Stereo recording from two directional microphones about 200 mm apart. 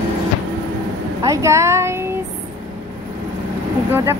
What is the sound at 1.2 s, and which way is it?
Speech, 15° right (ahead or behind).